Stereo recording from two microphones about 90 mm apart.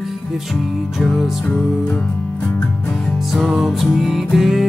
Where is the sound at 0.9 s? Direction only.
Centre (ahead or behind).